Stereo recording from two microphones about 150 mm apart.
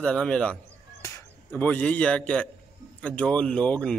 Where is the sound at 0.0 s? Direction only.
5° left (ahead or behind).